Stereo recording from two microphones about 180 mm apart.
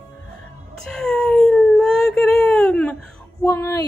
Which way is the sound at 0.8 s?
5° left (ahead or behind).